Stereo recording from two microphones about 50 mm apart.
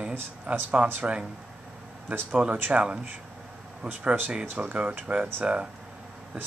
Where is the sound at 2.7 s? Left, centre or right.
Right.